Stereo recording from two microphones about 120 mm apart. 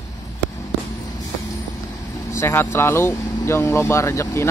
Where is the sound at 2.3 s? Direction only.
20° left (ahead or behind).